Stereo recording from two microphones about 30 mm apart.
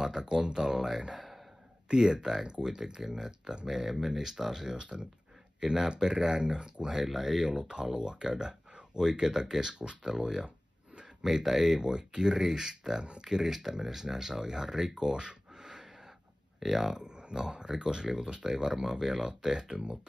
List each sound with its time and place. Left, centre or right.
0.2 s speech: right
1.1 s a sound: centre
1.9 s speech: right
3.0 s speech: centre
5.9 s speech: right
6.9 s speech: centre
7.3 s speech: right
11.2 s speech: centre
11.9 s speech: right
15.6 s gasp: centre
16.5 s speech: centre
17.0 s speech: right